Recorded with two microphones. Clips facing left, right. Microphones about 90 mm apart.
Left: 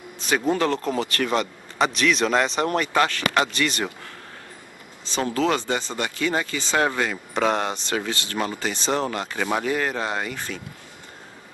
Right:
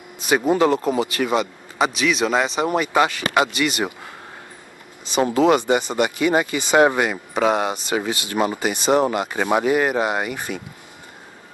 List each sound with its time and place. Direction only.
0.2 s speech: 15° right (ahead or behind)